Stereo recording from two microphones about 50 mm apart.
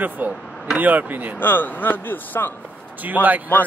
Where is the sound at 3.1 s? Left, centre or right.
Right.